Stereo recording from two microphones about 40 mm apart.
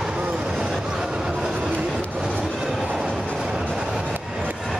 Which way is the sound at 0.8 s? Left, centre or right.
Centre.